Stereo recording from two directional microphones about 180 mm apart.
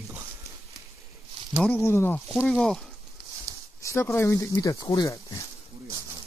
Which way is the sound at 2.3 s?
Centre (ahead or behind).